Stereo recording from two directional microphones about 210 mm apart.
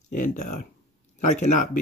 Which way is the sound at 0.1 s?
35° left (ahead or behind).